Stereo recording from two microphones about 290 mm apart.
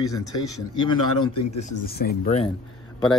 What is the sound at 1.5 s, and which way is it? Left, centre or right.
Speech, left.